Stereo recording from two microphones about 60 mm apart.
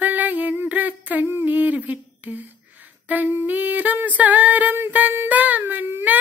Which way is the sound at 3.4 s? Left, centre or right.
Right.